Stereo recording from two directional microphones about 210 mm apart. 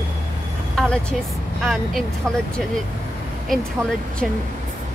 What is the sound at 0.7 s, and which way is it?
Speech, 5° left (ahead or behind).